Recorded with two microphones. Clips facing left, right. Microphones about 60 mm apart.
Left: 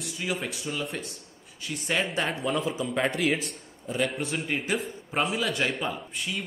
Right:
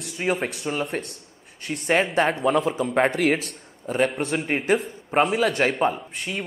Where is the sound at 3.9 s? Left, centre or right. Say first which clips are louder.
Right 6 dB; right.